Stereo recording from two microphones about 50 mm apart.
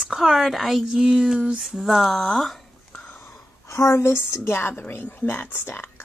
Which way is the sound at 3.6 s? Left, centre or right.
Left.